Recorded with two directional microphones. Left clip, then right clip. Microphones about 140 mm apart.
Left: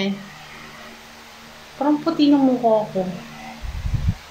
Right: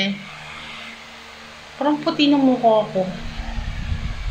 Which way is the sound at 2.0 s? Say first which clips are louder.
Even; 15° left (ahead or behind).